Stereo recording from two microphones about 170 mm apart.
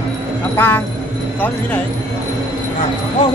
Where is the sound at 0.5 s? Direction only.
15° left (ahead or behind).